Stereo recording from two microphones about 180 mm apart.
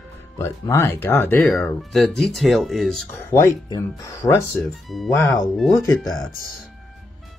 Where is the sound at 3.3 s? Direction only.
15° left (ahead or behind).